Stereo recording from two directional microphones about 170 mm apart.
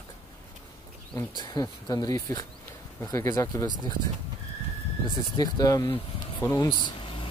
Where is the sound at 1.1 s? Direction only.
25° left (ahead or behind).